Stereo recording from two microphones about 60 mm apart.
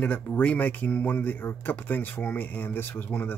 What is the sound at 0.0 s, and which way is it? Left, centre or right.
Speech, left.